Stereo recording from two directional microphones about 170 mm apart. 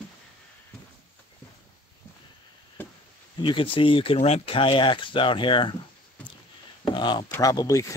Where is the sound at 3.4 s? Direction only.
30° left (ahead or behind).